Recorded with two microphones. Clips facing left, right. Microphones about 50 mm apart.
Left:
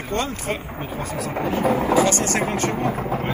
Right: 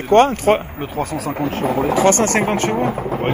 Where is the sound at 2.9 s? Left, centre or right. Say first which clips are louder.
Right 2 dB; centre.